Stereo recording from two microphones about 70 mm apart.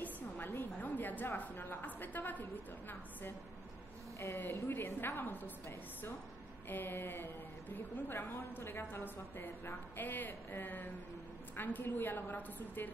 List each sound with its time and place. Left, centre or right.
0.0 s a woman's voice: left
4.2 s a woman's voice: left
6.7 s a woman's voice: left